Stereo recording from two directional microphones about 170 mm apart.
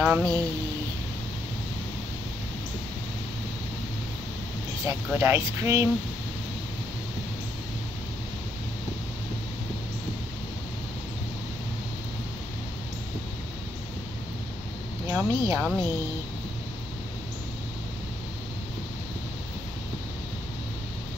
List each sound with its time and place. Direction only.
0.0 s speech: 15° right (ahead or behind)
4.8 s speech: 15° right (ahead or behind)
15.0 s speech: 15° right (ahead or behind)